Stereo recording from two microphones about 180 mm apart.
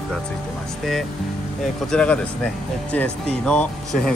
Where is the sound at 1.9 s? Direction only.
5° left (ahead or behind).